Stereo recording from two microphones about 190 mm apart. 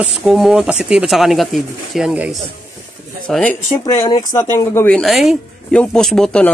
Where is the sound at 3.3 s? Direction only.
5° left (ahead or behind).